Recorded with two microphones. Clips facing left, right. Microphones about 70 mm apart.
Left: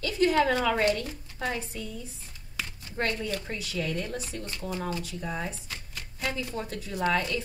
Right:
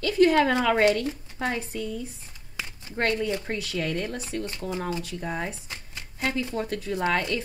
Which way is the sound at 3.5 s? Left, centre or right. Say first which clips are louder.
Right 3 dB; right.